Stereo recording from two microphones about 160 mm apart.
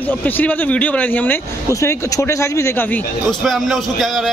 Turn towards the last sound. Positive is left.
turn(degrees=0)  # may be behind; listen again after turning